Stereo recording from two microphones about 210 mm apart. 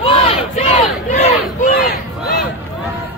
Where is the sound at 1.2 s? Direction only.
40° left (ahead or behind).